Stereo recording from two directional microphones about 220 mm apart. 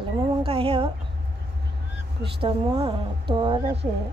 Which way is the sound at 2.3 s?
25° right (ahead or behind).